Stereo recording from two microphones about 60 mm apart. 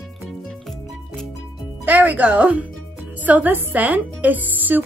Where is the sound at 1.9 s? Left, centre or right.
Right.